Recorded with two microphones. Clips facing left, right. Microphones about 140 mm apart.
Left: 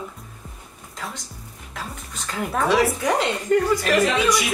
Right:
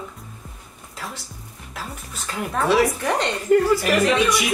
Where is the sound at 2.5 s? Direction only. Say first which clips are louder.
Right 1 dB; 5° right (ahead or behind).